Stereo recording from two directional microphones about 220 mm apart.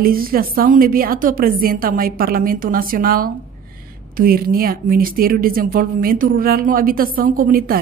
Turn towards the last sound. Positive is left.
turn(degrees=-40)  # may be behind; listen again after turning